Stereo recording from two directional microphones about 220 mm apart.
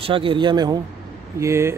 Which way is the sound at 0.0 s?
25° right (ahead or behind).